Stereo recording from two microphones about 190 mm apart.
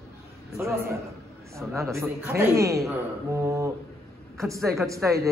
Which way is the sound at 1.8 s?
15° right (ahead or behind).